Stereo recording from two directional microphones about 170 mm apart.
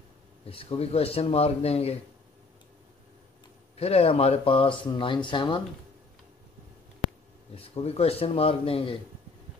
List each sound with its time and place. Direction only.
0.5 s speech: 35° left (ahead or behind)
3.7 s speech: 35° left (ahead or behind)
7.5 s speech: 35° left (ahead or behind)